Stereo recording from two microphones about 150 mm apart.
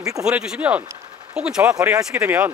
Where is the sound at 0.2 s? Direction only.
5° right (ahead or behind).